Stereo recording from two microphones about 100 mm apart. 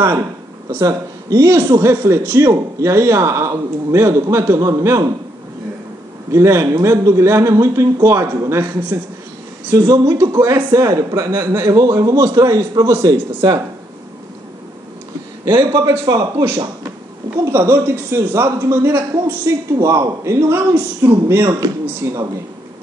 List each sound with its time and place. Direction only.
0.7 s speech: 30° right (ahead or behind)
6.3 s speech: 25° right (ahead or behind)
9.8 s a man's voice: 35° right (ahead or behind)
15.4 s a man's voice: 45° right (ahead or behind)
17.5 s speech: 20° right (ahead or behind)
21.5 s speech: 40° right (ahead or behind)
21.8 s speech: 30° right (ahead or behind)